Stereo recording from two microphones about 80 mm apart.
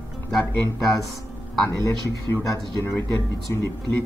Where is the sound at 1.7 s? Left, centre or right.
Left.